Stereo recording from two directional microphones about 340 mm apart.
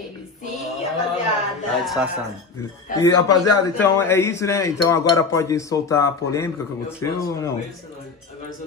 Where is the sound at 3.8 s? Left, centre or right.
Centre.